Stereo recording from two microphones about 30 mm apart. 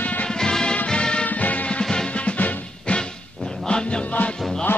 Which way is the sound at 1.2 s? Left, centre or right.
Left.